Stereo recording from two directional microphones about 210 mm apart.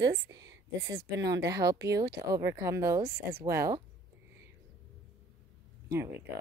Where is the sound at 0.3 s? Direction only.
15° right (ahead or behind).